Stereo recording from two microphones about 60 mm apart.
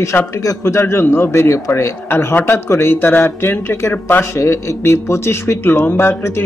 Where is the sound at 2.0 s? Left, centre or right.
Left.